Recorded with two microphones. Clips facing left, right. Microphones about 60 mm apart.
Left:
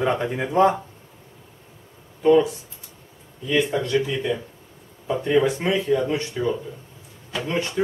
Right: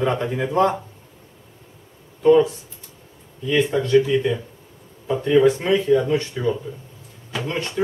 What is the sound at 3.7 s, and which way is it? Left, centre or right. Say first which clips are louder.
Speech: right 6 dB; centre.